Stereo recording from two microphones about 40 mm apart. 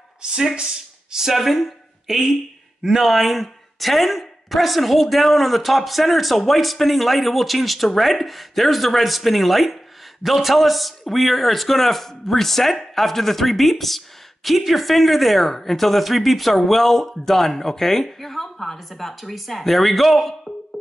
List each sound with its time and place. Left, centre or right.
0.2 s speech: centre
1.2 s a man's voice: centre